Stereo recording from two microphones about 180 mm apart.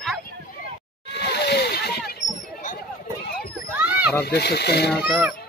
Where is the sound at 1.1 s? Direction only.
65° left (ahead or behind).